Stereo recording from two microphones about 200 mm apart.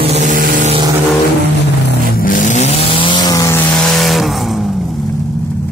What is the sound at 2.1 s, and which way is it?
Vehicle, 45° left (ahead or behind).